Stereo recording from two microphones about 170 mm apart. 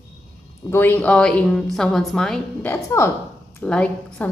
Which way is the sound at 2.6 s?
15° left (ahead or behind).